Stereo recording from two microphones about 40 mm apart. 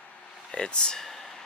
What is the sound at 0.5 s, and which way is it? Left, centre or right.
Speech, left.